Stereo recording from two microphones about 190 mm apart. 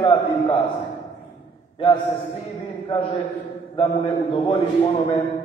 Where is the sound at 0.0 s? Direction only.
30° left (ahead or behind).